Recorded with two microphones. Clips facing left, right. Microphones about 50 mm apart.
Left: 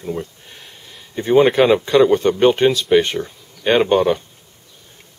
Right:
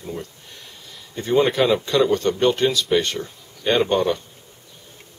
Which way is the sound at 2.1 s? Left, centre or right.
Left.